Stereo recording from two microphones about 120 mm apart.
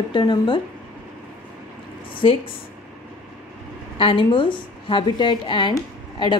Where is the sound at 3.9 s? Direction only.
45° left (ahead or behind).